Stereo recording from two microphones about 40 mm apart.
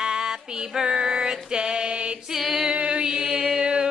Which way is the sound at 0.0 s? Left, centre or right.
Centre.